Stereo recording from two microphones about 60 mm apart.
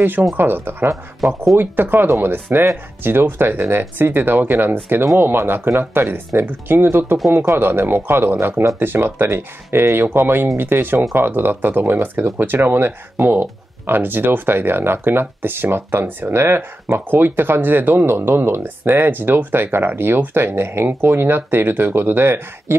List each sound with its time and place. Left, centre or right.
0.4 s speech: right